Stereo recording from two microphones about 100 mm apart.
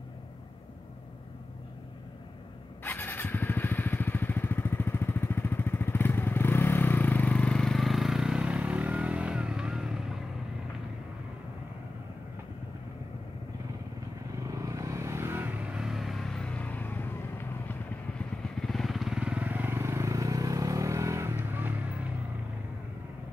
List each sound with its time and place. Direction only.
2.8 s motorcycle: 20° left (ahead or behind); by 10.1 s 5° right (ahead or behind)
14.4 s vehicle: 35° right (ahead or behind); by 17.7 s 20° left (ahead or behind)
18.6 s vehicle: centre (ahead or behind); by 21.8 s 20° right (ahead or behind)